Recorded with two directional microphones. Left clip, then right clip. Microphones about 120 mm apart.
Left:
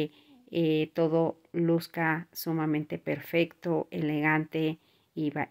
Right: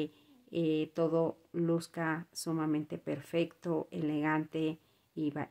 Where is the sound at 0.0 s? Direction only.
25° left (ahead or behind).